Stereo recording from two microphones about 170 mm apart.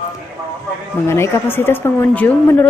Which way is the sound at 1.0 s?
15° left (ahead or behind).